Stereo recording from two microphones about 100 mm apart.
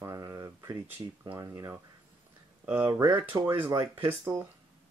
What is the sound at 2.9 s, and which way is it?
Speech, 45° right (ahead or behind).